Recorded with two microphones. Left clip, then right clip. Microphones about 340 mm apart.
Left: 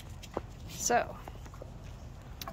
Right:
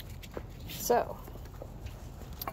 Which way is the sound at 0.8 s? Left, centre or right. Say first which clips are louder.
Right 1 dB; centre.